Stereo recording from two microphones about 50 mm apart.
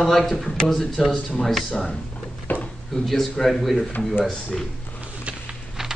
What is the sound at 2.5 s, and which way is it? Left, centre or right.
Drawer open or close, left.